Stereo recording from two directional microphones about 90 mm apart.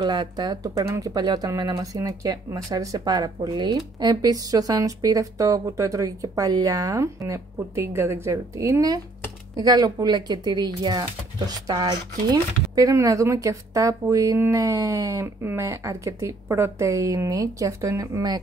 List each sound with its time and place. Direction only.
0.0 s speech: 55° right (ahead or behind)
0.8 s speech: 30° right (ahead or behind)
1.1 s speech: 50° right (ahead or behind)